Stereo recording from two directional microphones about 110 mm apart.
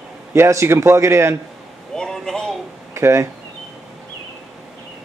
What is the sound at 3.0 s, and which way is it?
Speech, 25° right (ahead or behind).